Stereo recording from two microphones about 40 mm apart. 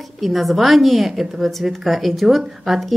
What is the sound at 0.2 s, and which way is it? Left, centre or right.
Speech, centre.